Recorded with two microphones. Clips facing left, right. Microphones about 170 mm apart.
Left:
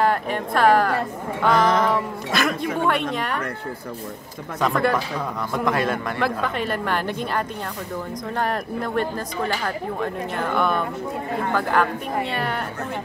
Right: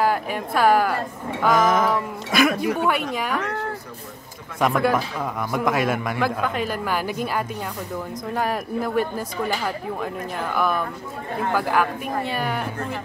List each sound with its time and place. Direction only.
0.0 s speech: 5° right (ahead or behind)
4.6 s speech: 5° right (ahead or behind)